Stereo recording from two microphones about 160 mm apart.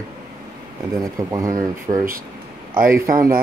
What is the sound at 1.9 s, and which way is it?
Speech, 40° right (ahead or behind).